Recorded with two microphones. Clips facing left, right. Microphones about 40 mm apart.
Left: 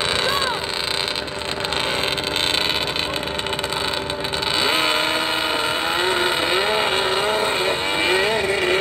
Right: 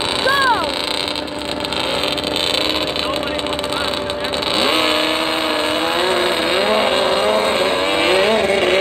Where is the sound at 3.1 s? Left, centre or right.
Right.